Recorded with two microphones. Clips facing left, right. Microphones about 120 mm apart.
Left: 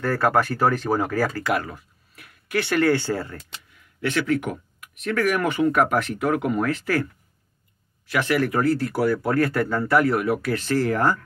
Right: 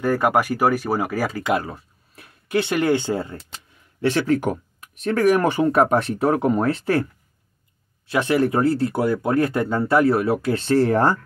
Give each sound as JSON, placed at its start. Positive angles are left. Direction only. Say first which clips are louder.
{"t": 0.0, "sound": "speech", "louder": "right 2 dB", "side_deg": -15}
{"t": 3.5, "sound": "speech", "louder": "right 2 dB", "side_deg": -30}
{"t": 8.1, "sound": "speech", "louder": "right 3 dB", "side_deg": -25}